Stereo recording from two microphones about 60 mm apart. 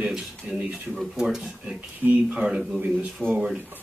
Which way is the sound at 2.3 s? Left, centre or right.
Centre.